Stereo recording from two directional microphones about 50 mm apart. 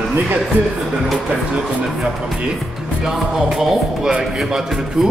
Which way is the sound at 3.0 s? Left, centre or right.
Centre.